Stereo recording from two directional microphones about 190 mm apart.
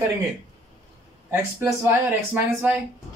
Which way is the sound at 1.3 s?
10° right (ahead or behind).